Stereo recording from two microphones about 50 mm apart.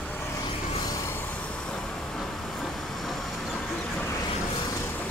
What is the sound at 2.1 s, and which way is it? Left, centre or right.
Vehicle, centre.